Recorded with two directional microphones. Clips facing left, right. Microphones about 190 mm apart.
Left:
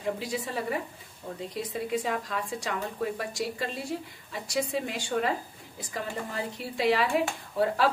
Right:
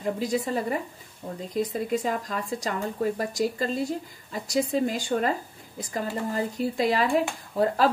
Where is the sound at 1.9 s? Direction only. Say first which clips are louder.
Right 3 dB; 40° right (ahead or behind).